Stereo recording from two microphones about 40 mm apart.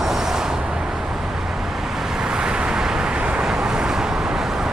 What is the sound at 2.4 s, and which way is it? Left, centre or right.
Vehicle, right.